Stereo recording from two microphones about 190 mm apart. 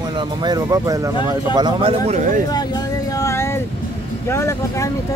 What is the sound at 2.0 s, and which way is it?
Speech, 40° right (ahead or behind).